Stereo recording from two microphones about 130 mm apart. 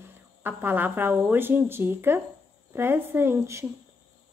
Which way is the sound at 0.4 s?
15° right (ahead or behind).